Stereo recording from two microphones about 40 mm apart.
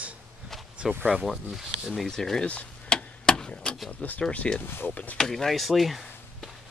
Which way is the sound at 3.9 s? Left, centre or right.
Left.